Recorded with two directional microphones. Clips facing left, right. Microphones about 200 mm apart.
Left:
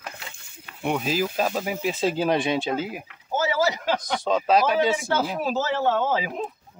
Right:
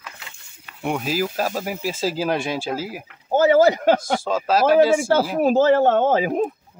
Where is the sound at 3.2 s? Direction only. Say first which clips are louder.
Right 9 dB; 55° right (ahead or behind).